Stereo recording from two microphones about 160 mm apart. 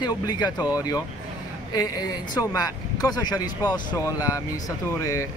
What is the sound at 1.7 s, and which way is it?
Speech, 20° left (ahead or behind).